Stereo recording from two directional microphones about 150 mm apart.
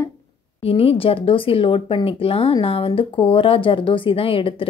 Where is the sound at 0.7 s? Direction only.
40° left (ahead or behind).